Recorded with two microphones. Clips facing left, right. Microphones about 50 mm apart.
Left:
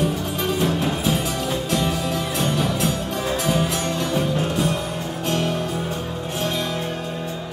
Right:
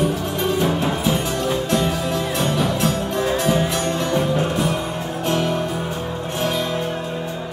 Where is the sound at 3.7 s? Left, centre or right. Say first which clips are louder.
Right 3 dB; right.